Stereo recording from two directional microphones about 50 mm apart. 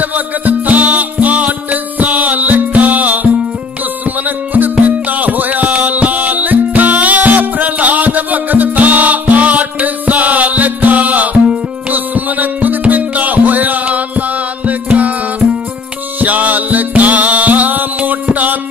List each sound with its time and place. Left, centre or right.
0.0 s music: right
4.6 s music: right
16.2 s music: right